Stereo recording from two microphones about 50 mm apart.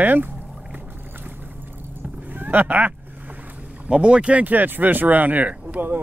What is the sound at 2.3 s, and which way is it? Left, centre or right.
Speech, right.